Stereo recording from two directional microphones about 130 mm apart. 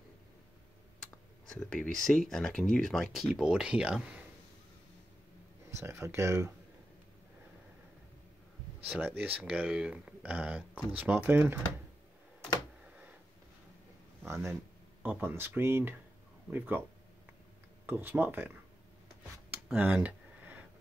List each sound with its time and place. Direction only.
1.5 s speech: 5° left (ahead or behind)
5.7 s speech: 20° right (ahead or behind)
8.9 s speech: 15° right (ahead or behind)
14.2 s speech: 20° right (ahead or behind)
17.8 s speech: 15° right (ahead or behind)
19.7 s a sound: 10° right (ahead or behind)